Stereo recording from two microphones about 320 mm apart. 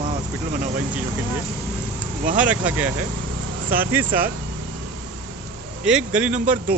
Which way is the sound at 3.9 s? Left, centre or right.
Centre.